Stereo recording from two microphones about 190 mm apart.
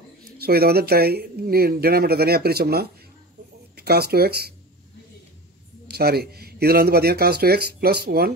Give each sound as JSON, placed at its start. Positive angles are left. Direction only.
{"t": 0.4, "sound": "speech", "side_deg": -55}
{"t": 5.9, "sound": "speech", "side_deg": -55}